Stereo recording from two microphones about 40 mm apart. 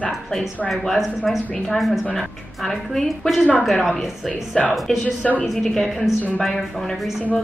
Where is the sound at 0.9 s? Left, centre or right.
Centre.